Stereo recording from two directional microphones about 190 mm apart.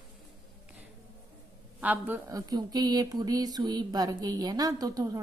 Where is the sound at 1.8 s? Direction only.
10° right (ahead or behind).